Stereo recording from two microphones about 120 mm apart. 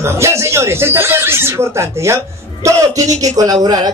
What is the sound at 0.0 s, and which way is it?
A man's voice, 25° right (ahead or behind).